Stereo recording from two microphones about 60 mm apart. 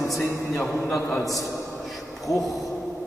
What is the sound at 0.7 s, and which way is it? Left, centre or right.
Speech, centre.